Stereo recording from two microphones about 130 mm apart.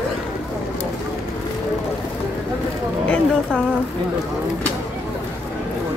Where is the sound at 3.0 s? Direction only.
5° left (ahead or behind).